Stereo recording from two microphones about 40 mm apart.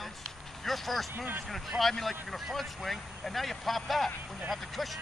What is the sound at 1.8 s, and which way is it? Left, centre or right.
Speech, centre.